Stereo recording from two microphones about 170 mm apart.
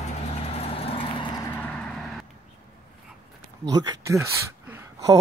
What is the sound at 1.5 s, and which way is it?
Vehicle, 10° left (ahead or behind).